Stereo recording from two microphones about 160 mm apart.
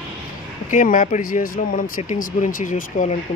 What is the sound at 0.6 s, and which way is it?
Speech, 55° left (ahead or behind).